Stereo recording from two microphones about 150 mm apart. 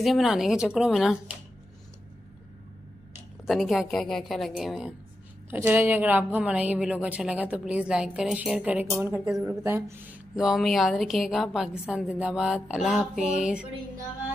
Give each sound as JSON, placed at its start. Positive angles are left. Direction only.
{"t": 0.0, "sound": "a woman's voice", "side_deg": 0}
{"t": 3.4, "sound": "a woman's voice", "side_deg": 0}
{"t": 5.5, "sound": "a woman's voice", "side_deg": -15}
{"t": 10.3, "sound": "a woman's voice", "side_deg": 0}